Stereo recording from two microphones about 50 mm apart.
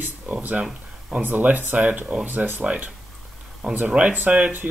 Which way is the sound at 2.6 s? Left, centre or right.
Right.